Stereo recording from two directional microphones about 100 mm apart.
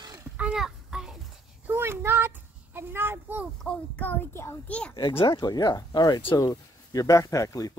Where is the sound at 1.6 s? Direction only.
25° right (ahead or behind).